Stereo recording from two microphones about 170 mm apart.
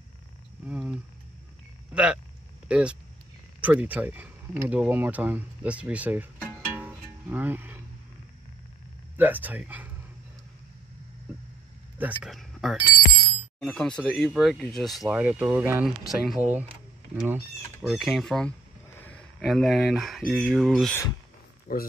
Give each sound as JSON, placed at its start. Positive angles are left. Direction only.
{"t": 0.7, "sound": "a sound", "side_deg": -5}
{"t": 2.7, "sound": "speech", "side_deg": -5}
{"t": 9.1, "sound": "speech", "side_deg": -10}
{"t": 12.0, "sound": "speech", "side_deg": -5}
{"t": 16.5, "sound": "a sound", "side_deg": -10}
{"t": 17.8, "sound": "speech", "side_deg": 0}
{"t": 21.7, "sound": "speech", "side_deg": 60}